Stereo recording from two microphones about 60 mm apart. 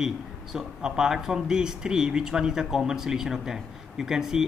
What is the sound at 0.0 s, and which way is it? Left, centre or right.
Speech, centre.